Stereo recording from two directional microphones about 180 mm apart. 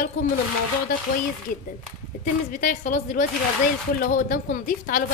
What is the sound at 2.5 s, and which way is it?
A woman's voice, 45° left (ahead or behind).